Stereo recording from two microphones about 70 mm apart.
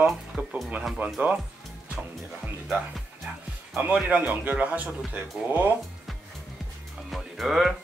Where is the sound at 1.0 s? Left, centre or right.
Right.